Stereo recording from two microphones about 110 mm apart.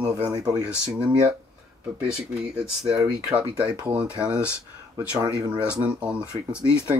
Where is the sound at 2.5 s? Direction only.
5° right (ahead or behind).